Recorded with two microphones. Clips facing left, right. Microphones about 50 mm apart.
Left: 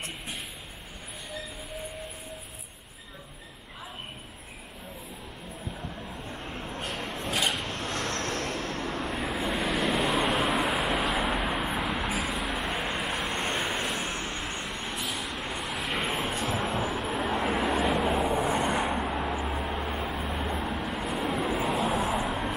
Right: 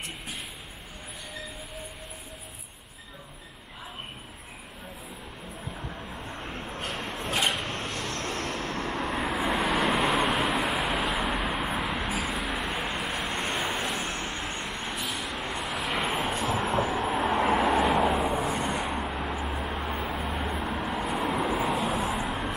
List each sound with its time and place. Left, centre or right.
6.3 s vehicle: centre
6.9 s a sound: centre
7.4 s vehicle: centre
8.2 s vehicle: right
8.7 s vehicle: centre